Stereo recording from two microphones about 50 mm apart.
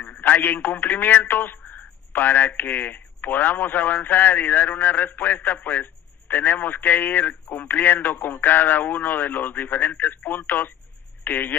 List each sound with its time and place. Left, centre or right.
0.0 s speech: left